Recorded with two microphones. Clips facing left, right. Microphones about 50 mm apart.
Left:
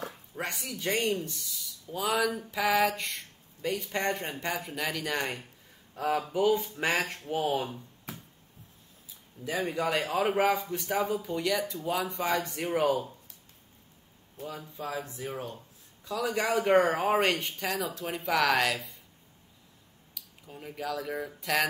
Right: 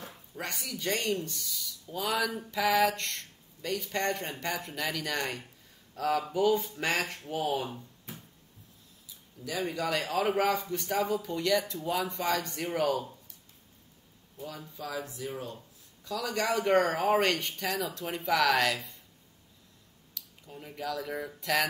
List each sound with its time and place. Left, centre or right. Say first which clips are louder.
0.6 s speech: left 2 dB; centre
9.4 s speech: left 2 dB; left
10.4 s speech: left 2 dB; centre
14.4 s speech: left 2 dB; left
16.1 s speech: left 2 dB; centre
20.2 s speech: even; centre